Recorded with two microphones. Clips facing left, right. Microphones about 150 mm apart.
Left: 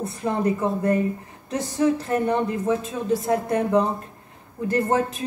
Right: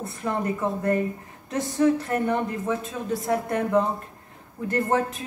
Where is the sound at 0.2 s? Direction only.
20° left (ahead or behind).